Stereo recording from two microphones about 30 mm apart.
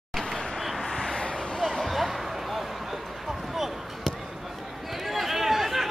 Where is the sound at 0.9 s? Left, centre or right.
Centre.